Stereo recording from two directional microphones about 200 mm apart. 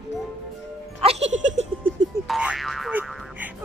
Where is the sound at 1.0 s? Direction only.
30° right (ahead or behind).